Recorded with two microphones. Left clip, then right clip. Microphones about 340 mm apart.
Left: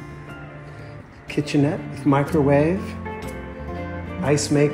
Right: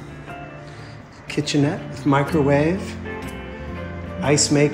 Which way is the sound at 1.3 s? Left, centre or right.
Centre.